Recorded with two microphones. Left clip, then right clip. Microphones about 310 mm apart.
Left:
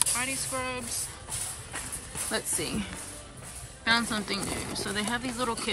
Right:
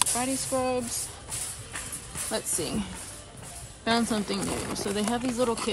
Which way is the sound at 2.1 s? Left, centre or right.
Centre.